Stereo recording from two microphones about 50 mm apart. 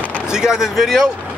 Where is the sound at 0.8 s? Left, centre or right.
Centre.